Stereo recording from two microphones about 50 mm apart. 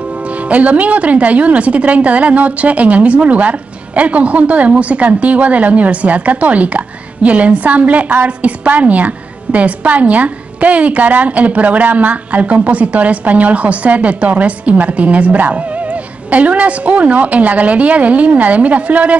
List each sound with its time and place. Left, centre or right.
0.5 s a woman's voice: right